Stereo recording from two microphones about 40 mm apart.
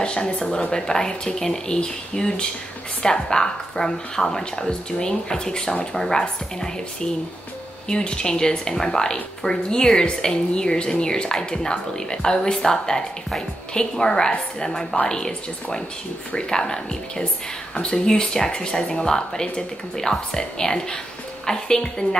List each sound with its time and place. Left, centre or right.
0.0 s a woman's voice: left